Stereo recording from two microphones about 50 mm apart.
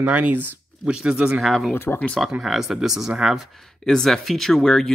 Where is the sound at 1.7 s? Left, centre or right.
Left.